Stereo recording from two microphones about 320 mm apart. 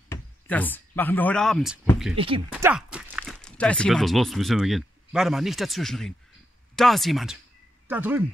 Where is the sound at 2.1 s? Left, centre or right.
Centre.